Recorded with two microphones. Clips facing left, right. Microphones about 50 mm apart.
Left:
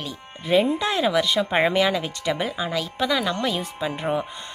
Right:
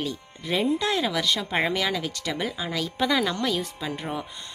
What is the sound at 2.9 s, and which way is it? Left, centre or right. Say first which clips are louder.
Speech: right 1 dB; centre.